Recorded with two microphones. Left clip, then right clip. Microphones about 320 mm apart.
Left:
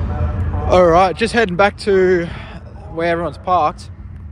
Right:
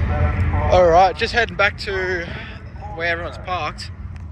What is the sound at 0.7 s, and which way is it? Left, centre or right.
Speech, left.